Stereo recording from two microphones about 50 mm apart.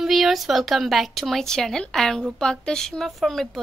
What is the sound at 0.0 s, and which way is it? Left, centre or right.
A woman's voice, centre.